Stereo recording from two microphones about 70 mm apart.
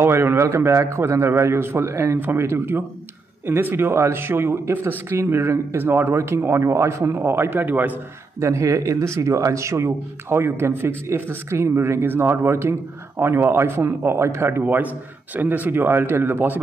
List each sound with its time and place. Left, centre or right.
0.0 s a man's voice: right
8.4 s a man's voice: right
14.6 s speech: right